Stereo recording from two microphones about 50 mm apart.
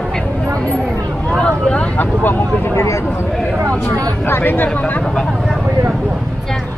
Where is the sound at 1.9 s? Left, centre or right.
Left.